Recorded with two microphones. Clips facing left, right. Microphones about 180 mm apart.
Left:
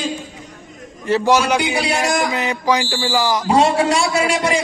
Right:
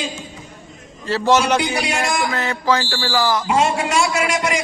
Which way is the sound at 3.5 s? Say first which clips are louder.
Left 7 dB; 35° left (ahead or behind).